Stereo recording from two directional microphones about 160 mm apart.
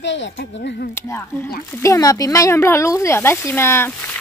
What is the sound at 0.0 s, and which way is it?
Speech, 90° left.